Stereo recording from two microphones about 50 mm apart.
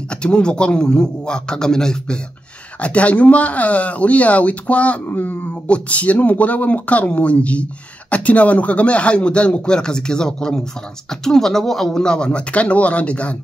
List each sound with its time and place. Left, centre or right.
0.1 s a man's voice: centre
2.8 s speech: left
5.0 s speech: left
5.7 s speech: left